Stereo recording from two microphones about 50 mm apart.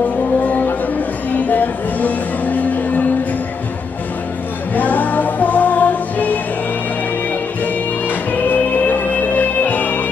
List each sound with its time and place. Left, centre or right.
0.4 s a sound: left
1.5 s music: left
4.7 s music: left
7.6 s music: left